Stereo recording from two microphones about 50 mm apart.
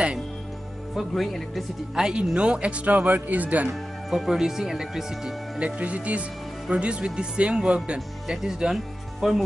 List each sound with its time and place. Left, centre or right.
0.9 s speech: centre
2.0 s speech: centre; by 3.6 s right
4.1 s speech: centre
5.6 s speech: right
8.3 s speech: centre